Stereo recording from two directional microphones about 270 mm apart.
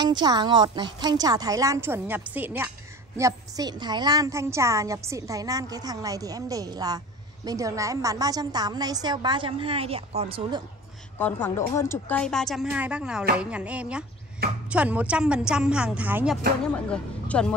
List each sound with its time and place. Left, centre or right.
0.2 s a woman's voice: centre
11.1 s speech: centre
16.7 s speech: centre